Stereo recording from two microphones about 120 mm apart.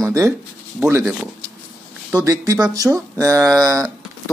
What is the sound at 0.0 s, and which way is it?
Speech, 25° right (ahead or behind).